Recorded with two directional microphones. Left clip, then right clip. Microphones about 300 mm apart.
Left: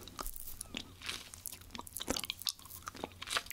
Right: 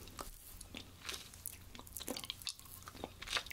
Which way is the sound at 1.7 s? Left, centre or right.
Left.